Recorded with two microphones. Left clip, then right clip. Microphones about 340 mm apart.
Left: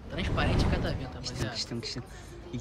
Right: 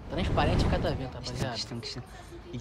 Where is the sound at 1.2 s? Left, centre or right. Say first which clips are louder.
Right 1 dB; centre.